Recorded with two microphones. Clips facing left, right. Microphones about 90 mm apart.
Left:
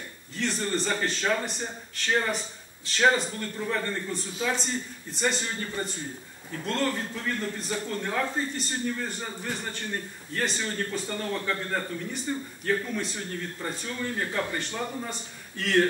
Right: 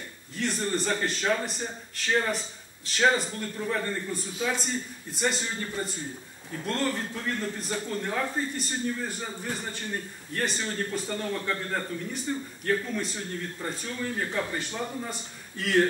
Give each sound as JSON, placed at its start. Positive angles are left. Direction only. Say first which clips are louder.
{"t": 0.4, "sound": "a man's voice", "louder": "even", "side_deg": -5}